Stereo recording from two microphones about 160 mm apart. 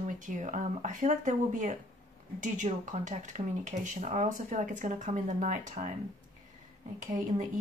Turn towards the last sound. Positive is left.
turn(degrees=-50)  # may be behind; listen again after turning